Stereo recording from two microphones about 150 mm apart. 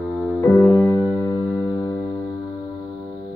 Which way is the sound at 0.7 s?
15° left (ahead or behind).